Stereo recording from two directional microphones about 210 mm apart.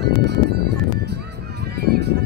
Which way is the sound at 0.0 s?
50° right (ahead or behind).